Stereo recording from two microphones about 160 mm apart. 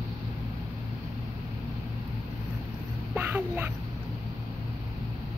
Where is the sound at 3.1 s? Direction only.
10° right (ahead or behind).